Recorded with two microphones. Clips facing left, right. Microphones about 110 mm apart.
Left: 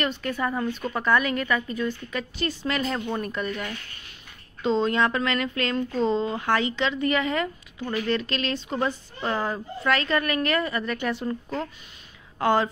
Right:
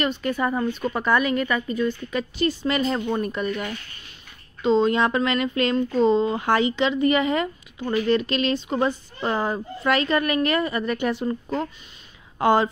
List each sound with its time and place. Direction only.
0.0 s speech: 5° right (ahead or behind)
0.7 s a woman's voice: centre (ahead or behind)
2.8 s speech: 15° right (ahead or behind)